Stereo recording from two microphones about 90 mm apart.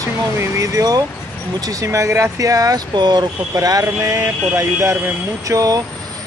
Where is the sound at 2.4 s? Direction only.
40° right (ahead or behind).